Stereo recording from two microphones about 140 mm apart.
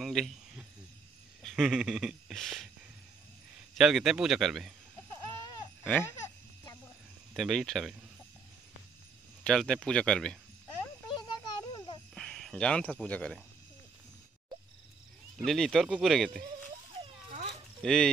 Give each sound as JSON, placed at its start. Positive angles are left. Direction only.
{"t": 0.0, "sound": "cricket", "side_deg": 0}
{"t": 1.4, "sound": "speech", "side_deg": 0}
{"t": 3.7, "sound": "speech", "side_deg": 0}
{"t": 5.1, "sound": "a sound", "side_deg": 25}
{"t": 7.3, "sound": "speech", "side_deg": 0}
{"t": 9.4, "sound": "speech", "side_deg": 5}
{"t": 11.1, "sound": "a sound", "side_deg": 30}
{"t": 12.2, "sound": "speech", "side_deg": 5}
{"t": 15.4, "sound": "speech", "side_deg": 0}
{"t": 17.8, "sound": "speech", "side_deg": 5}